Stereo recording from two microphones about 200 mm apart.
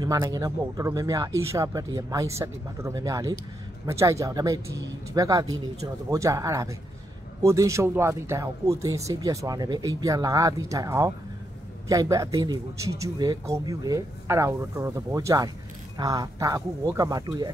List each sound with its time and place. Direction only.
0.0 s speech: 20° right (ahead or behind)